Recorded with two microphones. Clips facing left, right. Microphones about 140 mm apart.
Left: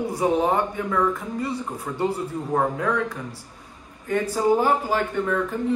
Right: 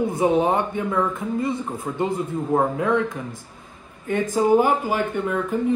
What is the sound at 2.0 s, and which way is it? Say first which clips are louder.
A man's voice: right 1 dB; 20° right (ahead or behind).